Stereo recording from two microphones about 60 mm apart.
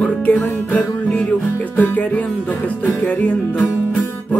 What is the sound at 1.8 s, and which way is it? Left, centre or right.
Music, left.